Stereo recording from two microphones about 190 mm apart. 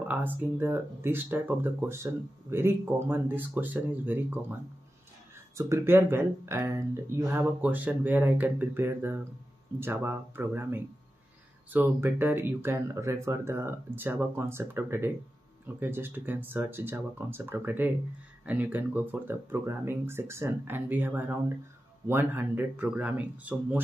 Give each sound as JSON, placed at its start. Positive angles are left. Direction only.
{"t": 0.1, "sound": "speech", "side_deg": -10}
{"t": 5.6, "sound": "speech", "side_deg": -15}